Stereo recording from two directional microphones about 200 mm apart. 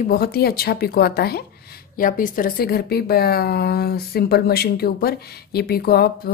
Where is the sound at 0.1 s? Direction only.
50° left (ahead or behind).